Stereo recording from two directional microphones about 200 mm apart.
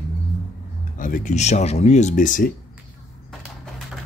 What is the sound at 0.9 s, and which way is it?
Speech, 40° left (ahead or behind).